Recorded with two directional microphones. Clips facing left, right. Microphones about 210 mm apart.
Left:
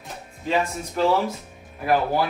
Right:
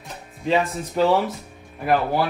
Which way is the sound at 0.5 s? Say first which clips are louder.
Right 3 dB; centre (ahead or behind).